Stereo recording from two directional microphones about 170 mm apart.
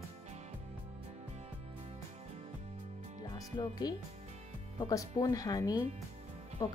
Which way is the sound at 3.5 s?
25° left (ahead or behind).